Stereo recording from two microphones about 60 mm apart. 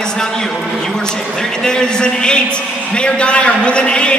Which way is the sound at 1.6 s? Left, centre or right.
Centre.